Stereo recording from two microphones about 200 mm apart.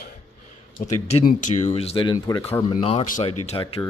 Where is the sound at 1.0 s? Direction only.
35° left (ahead or behind).